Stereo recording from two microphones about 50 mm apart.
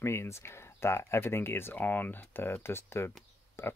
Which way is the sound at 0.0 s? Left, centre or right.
Left.